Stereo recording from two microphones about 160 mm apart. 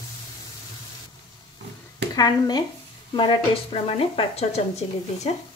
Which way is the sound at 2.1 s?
25° left (ahead or behind).